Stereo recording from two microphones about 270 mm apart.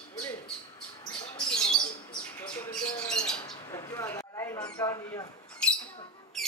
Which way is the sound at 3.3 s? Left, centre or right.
Centre.